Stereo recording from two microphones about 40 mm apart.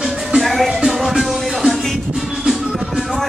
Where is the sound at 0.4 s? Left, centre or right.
Centre.